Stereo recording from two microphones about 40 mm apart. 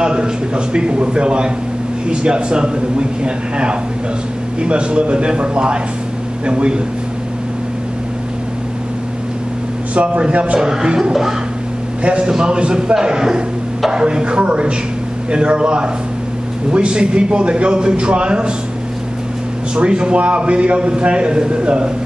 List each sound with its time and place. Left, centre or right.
0.0 s a man's voice: right
9.9 s a man's voice: right
10.6 s a man's voice: centre
12.0 s a man's voice: right
19.7 s a man's voice: right